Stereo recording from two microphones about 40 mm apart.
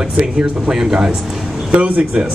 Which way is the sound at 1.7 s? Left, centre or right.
Right.